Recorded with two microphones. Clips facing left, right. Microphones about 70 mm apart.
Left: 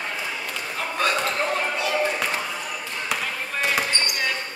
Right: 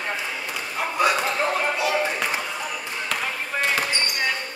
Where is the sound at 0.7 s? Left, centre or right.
Centre.